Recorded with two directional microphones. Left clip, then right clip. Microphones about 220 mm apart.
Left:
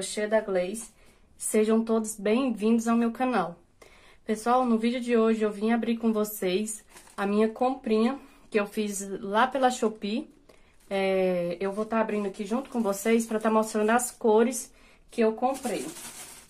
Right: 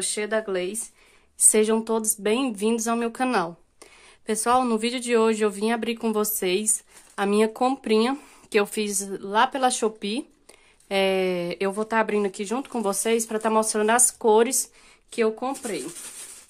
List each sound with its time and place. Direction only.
0.1 s speech: 40° right (ahead or behind)
12.9 s speech: 30° right (ahead or behind)
15.1 s speech: 45° right (ahead or behind)